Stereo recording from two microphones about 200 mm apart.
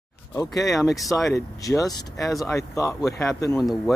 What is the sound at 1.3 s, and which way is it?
Speech, 15° left (ahead or behind).